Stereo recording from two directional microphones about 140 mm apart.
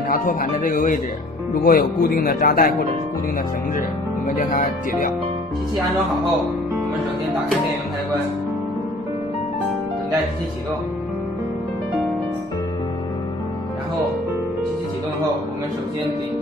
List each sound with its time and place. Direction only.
0.1 s a man's voice: 80° left
4.4 s speech: 70° left (ahead or behind)